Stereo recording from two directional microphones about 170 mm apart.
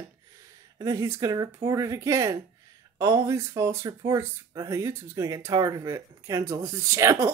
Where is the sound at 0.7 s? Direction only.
20° right (ahead or behind).